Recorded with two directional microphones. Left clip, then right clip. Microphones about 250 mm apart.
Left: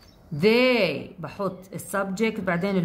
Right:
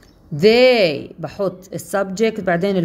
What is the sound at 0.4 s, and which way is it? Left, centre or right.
A woman's voice, centre.